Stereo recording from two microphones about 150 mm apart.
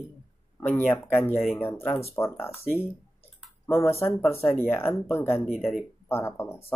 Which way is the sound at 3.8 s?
15° left (ahead or behind).